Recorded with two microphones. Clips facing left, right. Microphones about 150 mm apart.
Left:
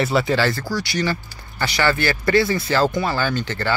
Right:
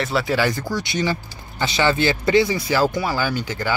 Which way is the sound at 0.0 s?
Centre (ahead or behind).